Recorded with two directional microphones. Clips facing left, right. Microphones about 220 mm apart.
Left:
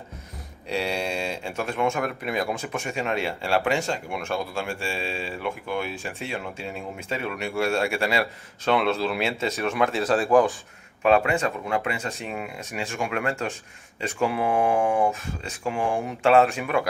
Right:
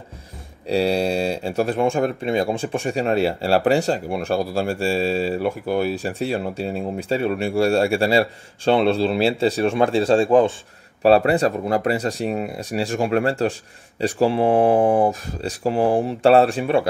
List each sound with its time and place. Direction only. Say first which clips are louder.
0.7 s speech: right 8 dB; 35° right (ahead or behind)